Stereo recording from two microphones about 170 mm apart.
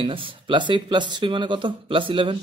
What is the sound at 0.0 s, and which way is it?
Speech, 30° right (ahead or behind).